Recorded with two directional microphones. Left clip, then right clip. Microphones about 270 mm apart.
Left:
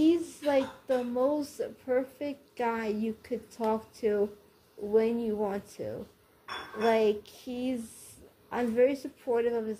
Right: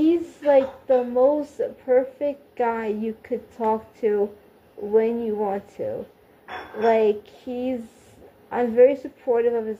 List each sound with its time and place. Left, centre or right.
0.0 s speech: centre